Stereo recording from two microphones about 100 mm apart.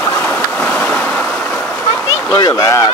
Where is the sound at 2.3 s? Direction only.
40° left (ahead or behind).